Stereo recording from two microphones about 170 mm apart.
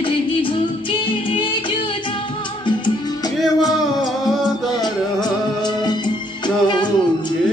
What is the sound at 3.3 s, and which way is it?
Music, centre (ahead or behind).